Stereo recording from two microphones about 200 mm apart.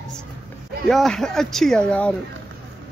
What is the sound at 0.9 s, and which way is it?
A man's voice, centre (ahead or behind).